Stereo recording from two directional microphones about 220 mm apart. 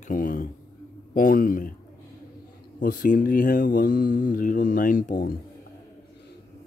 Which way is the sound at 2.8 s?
40° left (ahead or behind).